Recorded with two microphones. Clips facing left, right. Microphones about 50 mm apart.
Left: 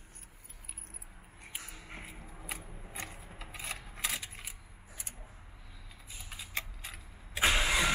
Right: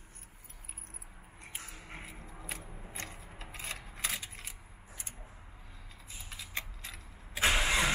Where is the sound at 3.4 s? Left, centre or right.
Left.